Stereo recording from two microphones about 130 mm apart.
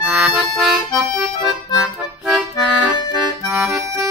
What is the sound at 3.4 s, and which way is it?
Accordion, centre (ahead or behind).